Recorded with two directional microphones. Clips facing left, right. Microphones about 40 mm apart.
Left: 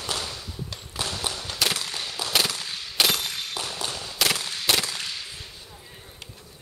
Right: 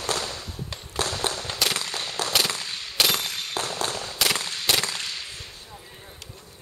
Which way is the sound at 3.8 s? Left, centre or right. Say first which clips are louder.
Right 3 dB; right.